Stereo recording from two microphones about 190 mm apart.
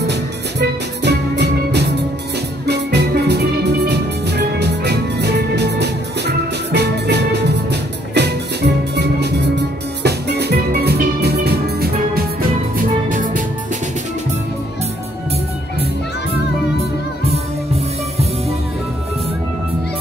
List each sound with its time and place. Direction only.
0.0 s music: 65° right (ahead or behind); by 13.4 s 45° right (ahead or behind)